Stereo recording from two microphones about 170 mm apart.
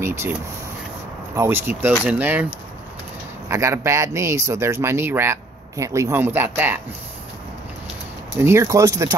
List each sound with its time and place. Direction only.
0.0 s a sound: 15° right (ahead or behind)
1.3 s speech: 15° right (ahead or behind)
3.4 s speech: 15° right (ahead or behind)
8.4 s speech: 15° right (ahead or behind)